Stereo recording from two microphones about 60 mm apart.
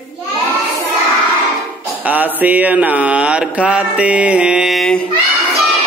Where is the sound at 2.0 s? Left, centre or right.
Right.